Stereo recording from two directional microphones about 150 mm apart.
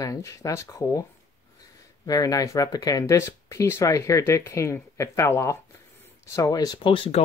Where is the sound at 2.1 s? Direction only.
25° left (ahead or behind).